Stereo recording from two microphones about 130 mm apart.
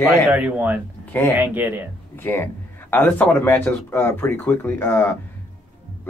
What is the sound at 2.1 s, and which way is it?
Speech, 15° left (ahead or behind).